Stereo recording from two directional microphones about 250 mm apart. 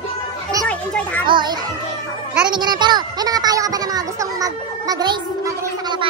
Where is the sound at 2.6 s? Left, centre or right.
Centre.